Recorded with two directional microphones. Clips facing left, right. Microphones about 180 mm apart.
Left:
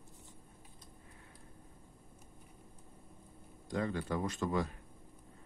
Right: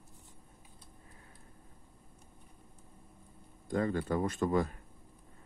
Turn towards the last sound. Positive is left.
turn(degrees=-50)  # may be behind; listen again after turning